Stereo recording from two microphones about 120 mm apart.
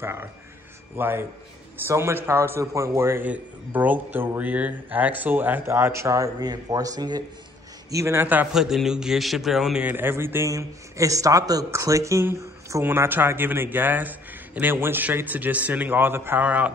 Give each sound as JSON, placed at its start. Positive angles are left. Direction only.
{"t": 0.0, "sound": "a man's voice", "side_deg": -20}
{"t": 7.9, "sound": "a man's voice", "side_deg": -25}
{"t": 8.5, "sound": "a man's voice", "side_deg": -5}
{"t": 9.8, "sound": "a man's voice", "side_deg": -15}